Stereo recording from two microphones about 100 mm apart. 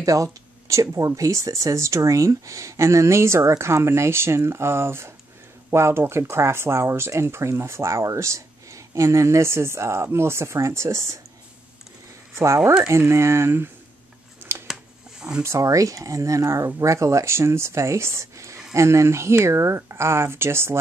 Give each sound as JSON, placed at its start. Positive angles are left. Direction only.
{"t": 0.0, "sound": "speech", "side_deg": -35}
{"t": 12.4, "sound": "speech", "side_deg": -25}
{"t": 14.7, "sound": "a sound", "side_deg": -10}
{"t": 15.4, "sound": "speech", "side_deg": -30}